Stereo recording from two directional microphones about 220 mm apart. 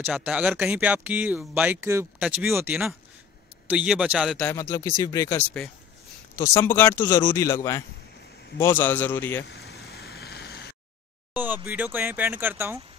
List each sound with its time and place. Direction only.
0.0 s a man's voice: 5° right (ahead or behind)
4.5 s speech: 15° left (ahead or behind)
9.8 s vehicle: 45° left (ahead or behind)
11.3 s speech: 10° right (ahead or behind)